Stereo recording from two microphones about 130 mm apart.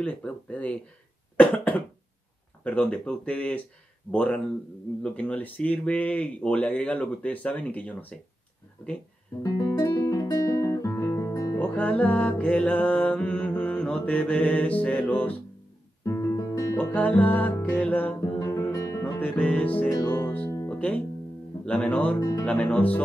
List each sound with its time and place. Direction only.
0.0 s speech: 10° left (ahead or behind)
1.3 s cough: 10° left (ahead or behind)
2.6 s speech: 10° left (ahead or behind)
9.4 s guitar: 25° left (ahead or behind)
11.5 s music: 10° left (ahead or behind)
16.0 s music: 20° left (ahead or behind)
16.7 s speech: 10° left (ahead or behind)
18.4 s music: 20° left (ahead or behind)
19.2 s speech: 10° left (ahead or behind)
19.9 s music: 30° left (ahead or behind)
20.2 s music: 10° left (ahead or behind)
21.6 s speech: 10° left (ahead or behind)